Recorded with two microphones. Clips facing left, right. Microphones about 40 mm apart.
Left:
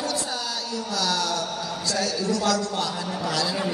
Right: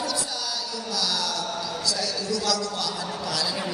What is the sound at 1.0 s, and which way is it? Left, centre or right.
A woman's voice, left.